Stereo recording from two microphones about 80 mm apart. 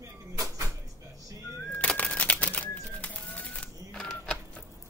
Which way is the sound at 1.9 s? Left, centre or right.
Centre.